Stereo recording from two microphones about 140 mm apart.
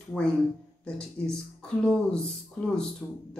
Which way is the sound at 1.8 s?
5° left (ahead or behind).